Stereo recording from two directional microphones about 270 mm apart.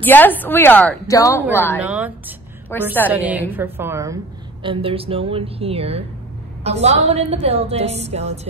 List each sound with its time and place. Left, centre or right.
0.0 s a woman's voice: centre
1.8 s a woman's voice: centre
2.7 s a woman's voice: centre
3.1 s a woman's voice: centre; by 8.4 s right